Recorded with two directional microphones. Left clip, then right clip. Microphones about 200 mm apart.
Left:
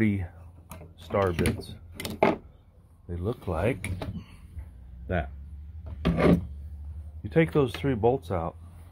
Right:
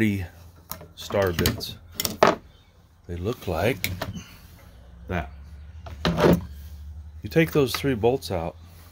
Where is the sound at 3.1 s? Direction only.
30° right (ahead or behind).